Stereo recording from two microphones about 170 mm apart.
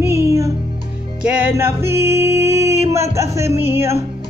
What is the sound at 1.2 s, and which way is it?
Music, 10° right (ahead or behind).